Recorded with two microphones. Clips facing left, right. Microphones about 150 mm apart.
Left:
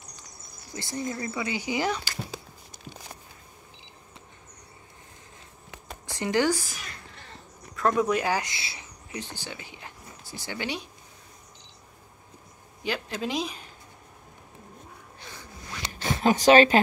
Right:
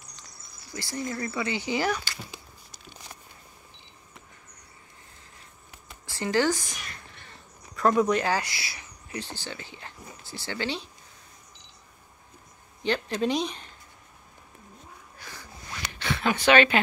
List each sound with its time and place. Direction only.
0.7 s speech: 20° left (ahead or behind)
6.0 s speech: 20° left (ahead or behind)
12.8 s speech: 5° left (ahead or behind)
15.1 s a sound: 25° left (ahead or behind)
15.9 s speech: 40° left (ahead or behind)